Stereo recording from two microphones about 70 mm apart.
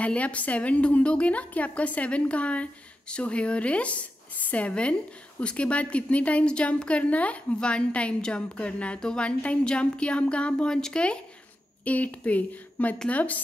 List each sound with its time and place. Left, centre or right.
0.0 s a woman's voice: centre